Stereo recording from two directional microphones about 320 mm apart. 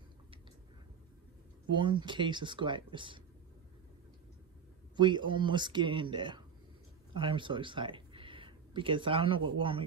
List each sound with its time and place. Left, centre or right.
1.7 s speech: centre
4.9 s speech: centre